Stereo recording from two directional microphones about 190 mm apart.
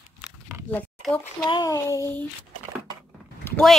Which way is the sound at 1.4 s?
20° left (ahead or behind).